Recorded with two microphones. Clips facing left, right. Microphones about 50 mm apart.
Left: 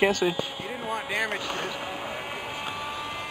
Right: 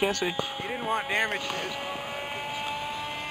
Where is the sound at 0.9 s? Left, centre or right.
Right.